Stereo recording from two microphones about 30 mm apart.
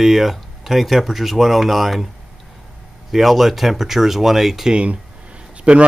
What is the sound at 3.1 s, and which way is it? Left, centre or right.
Speech, centre.